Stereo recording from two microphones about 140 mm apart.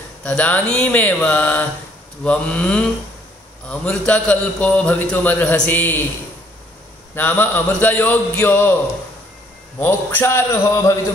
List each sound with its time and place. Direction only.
0.2 s a man's voice: 10° left (ahead or behind)
7.2 s a man's voice: 15° left (ahead or behind)
9.8 s a man's voice: 15° left (ahead or behind)